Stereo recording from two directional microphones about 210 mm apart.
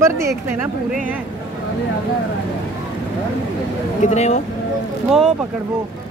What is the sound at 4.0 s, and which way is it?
Speech, 35° left (ahead or behind).